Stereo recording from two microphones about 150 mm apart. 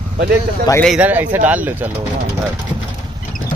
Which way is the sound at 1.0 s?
10° right (ahead or behind).